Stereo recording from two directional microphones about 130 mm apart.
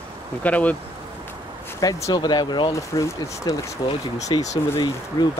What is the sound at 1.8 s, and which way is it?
Speech, 25° left (ahead or behind).